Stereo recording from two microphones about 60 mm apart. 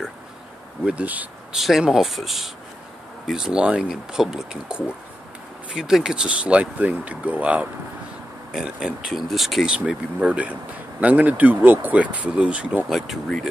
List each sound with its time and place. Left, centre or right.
0.8 s speech: right
1.5 s speech: centre; by 7.6 s right
8.5 s speech: centre
9.7 s speech: centre
12.9 s speech: centre